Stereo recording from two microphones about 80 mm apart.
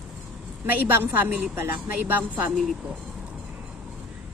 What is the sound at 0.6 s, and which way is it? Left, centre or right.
A woman's voice, right.